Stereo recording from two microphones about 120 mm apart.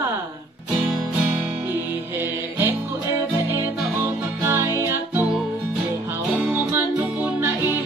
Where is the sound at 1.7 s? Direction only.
20° right (ahead or behind).